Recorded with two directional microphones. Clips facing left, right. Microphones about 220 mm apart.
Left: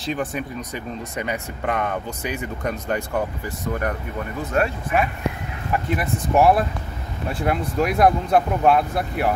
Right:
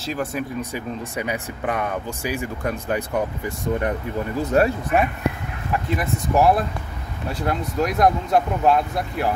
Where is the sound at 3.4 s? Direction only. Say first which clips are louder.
Right 2 dB; 25° right (ahead or behind).